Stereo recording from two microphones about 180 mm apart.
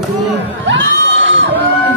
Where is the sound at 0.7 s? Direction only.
90° right.